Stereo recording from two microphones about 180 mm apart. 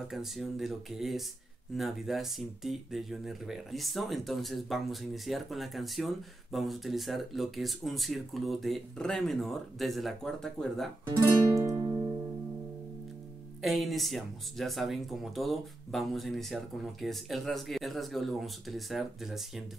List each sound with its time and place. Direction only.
0.1 s speech: centre (ahead or behind)
11.1 s music: 20° right (ahead or behind)
13.6 s speech: centre (ahead or behind)